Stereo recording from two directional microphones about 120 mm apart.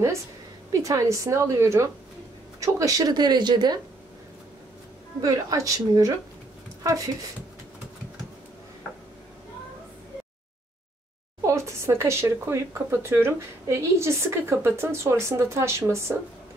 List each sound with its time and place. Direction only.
0.7 s speech: 25° right (ahead or behind)
5.2 s speech: 30° right (ahead or behind)
11.4 s speech: 25° right (ahead or behind)